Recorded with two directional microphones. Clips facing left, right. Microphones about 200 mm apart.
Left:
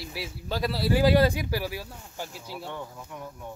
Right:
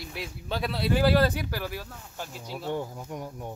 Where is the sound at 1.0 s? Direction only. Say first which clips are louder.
Left 2 dB; 15° left (ahead or behind).